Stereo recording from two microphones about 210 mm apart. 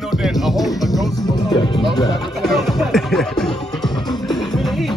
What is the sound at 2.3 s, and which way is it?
Music, centre (ahead or behind).